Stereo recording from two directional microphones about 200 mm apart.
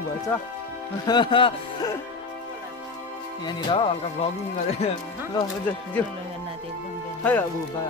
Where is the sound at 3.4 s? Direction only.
25° left (ahead or behind).